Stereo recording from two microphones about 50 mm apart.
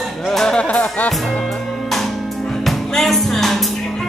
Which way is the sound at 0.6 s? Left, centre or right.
Left.